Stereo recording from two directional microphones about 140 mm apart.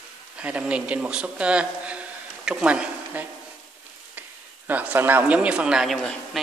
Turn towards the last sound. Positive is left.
turn(degrees=5)  # may be behind; listen again after turning